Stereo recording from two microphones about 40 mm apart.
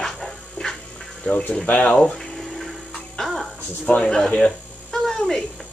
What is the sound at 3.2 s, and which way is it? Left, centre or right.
Music, centre.